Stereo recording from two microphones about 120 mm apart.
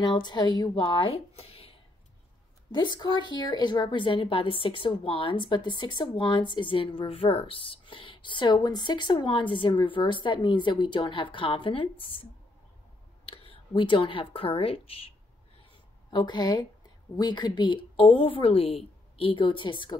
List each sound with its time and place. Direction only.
0.0 s a woman's voice: 40° left (ahead or behind)
2.7 s a woman's voice: 40° left (ahead or behind)
13.7 s a woman's voice: 45° left (ahead or behind)
16.1 s a woman's voice: 40° left (ahead or behind)